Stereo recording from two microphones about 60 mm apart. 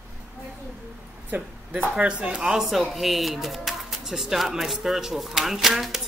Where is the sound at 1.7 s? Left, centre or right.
Right.